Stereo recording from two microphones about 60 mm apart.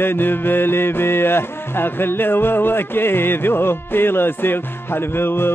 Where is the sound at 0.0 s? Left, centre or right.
Left.